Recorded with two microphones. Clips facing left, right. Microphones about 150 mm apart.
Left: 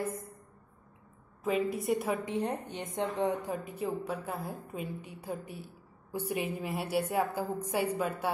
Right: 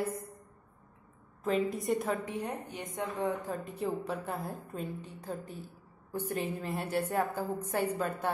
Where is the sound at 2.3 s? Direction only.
25° left (ahead or behind).